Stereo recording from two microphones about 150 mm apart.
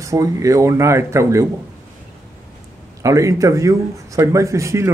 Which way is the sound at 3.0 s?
20° right (ahead or behind).